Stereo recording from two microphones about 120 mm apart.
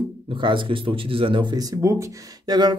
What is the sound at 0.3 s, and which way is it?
Speech, 45° right (ahead or behind).